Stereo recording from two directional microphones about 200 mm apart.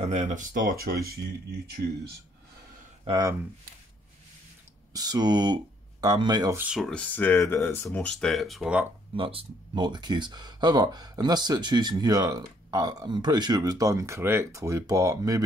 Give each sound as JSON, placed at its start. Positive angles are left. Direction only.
{"t": 0.0, "sound": "speech", "side_deg": -35}
{"t": 3.1, "sound": "speech", "side_deg": -20}
{"t": 4.9, "sound": "speech", "side_deg": -20}
{"t": 9.1, "sound": "speech", "side_deg": -25}